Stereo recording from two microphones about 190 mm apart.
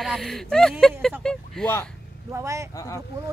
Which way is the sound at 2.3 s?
15° right (ahead or behind).